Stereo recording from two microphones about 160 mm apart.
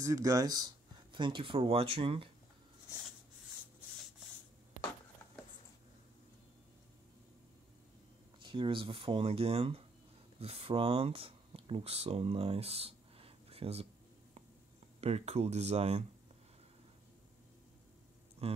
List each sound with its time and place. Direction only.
0.0 s speech: 20° right (ahead or behind)
8.4 s speech: 30° right (ahead or behind)
15.0 s speech: 40° right (ahead or behind)
18.4 s speech: 40° right (ahead or behind)